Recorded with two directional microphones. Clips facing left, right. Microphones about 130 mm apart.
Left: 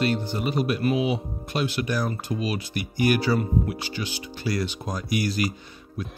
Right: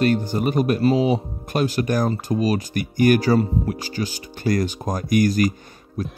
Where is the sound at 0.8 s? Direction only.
35° right (ahead or behind).